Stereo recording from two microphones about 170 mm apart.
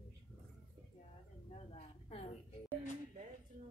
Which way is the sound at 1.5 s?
40° left (ahead or behind).